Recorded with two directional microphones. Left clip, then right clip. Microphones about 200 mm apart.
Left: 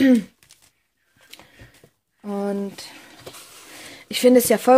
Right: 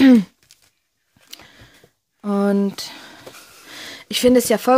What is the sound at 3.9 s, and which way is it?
Speech, 25° right (ahead or behind).